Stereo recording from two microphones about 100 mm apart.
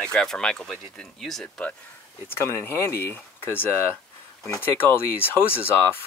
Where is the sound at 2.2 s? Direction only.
25° left (ahead or behind).